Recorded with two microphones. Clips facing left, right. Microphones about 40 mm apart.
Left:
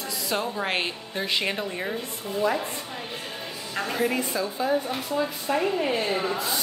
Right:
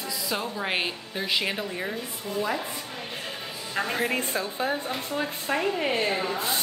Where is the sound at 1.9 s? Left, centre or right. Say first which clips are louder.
Left 1 dB; left.